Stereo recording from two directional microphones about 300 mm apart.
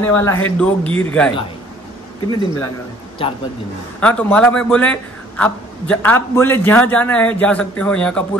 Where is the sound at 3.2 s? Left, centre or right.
Centre.